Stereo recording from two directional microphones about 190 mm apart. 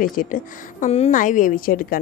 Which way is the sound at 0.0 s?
45° left (ahead or behind).